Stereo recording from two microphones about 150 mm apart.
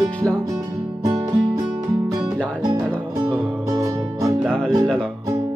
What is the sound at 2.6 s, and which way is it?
Music, 25° right (ahead or behind).